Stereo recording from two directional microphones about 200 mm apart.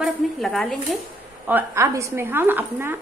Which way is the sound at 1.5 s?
15° right (ahead or behind).